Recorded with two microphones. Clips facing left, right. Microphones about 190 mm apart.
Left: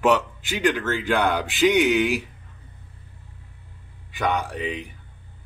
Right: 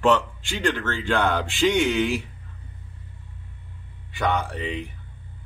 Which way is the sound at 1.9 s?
15° left (ahead or behind).